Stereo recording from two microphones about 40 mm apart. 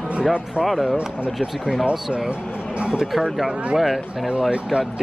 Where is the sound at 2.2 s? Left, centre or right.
Right.